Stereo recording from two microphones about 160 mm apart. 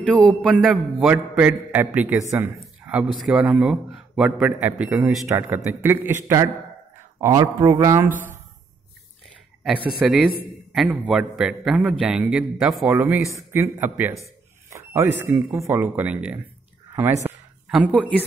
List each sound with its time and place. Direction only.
0.5 s a man's voice: centre (ahead or behind); by 8.1 s 20° right (ahead or behind)
8.1 s speech: 55° right (ahead or behind)
9.8 s a man's voice: 5° right (ahead or behind)
12.9 s a man's voice: 15° right (ahead or behind)
17.6 s speech: 5° right (ahead or behind)